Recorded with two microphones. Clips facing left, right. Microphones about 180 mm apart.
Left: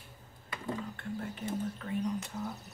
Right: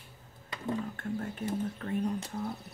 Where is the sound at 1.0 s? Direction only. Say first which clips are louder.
Right 3 dB; 45° right (ahead or behind).